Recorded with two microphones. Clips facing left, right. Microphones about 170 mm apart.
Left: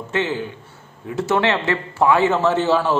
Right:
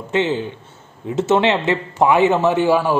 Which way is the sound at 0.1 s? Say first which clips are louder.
Right 4 dB; 20° right (ahead or behind).